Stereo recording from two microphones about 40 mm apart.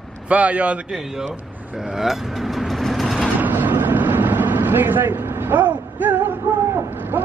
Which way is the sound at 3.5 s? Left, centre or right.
Right.